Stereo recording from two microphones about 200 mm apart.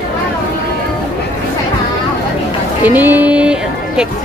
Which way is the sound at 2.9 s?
10° right (ahead or behind).